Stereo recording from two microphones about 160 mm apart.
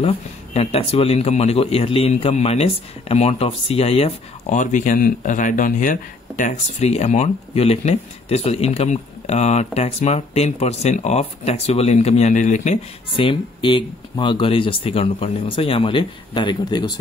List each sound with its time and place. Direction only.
0.0 s speech: 40° left (ahead or behind)
13.2 s speech: 30° left (ahead or behind)